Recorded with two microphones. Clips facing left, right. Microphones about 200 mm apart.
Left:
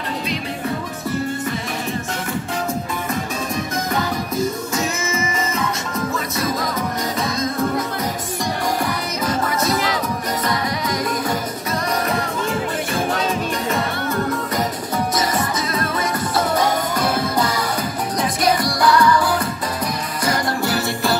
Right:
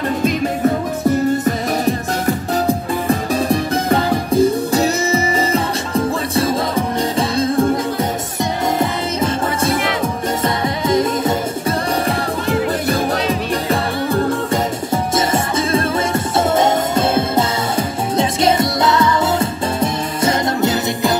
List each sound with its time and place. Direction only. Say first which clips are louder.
1.4 s music: right 8 dB; 40° right (ahead or behind)
12.9 s music: right 3 dB; 35° right (ahead or behind)